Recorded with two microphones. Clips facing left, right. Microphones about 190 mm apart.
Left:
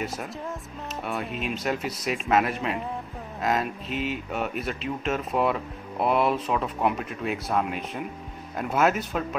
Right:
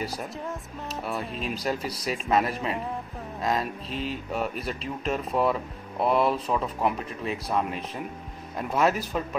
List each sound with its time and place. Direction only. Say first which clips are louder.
0.0 s speech: even; centre (ahead or behind)
3.9 s speech: left 3 dB; 30° right (ahead or behind)
4.3 s speech: even; centre (ahead or behind)